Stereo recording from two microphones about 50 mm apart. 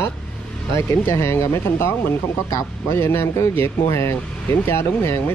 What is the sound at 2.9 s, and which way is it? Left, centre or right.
Speech, left.